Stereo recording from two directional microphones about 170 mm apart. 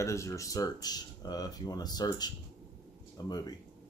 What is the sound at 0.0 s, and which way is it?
Speech, 15° left (ahead or behind).